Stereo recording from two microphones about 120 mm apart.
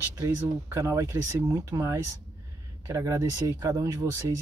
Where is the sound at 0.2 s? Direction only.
25° right (ahead or behind).